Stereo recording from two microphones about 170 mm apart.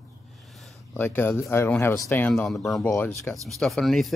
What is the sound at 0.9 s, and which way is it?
Speech, 10° left (ahead or behind).